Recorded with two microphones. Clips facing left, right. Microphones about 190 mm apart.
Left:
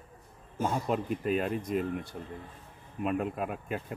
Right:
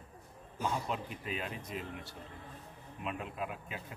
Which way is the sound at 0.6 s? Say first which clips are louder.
Left 6 dB; 50° left (ahead or behind).